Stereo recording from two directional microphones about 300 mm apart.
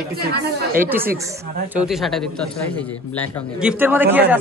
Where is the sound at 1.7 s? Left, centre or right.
Centre.